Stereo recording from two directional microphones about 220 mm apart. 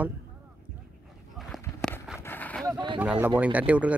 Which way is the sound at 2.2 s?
10° left (ahead or behind).